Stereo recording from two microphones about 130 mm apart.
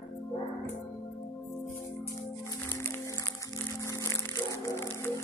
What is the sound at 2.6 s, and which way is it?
Music, 15° left (ahead or behind).